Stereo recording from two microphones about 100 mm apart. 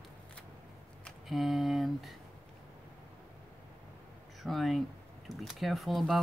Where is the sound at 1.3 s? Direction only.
Centre (ahead or behind).